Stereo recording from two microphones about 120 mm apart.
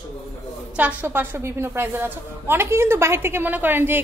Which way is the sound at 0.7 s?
15° right (ahead or behind).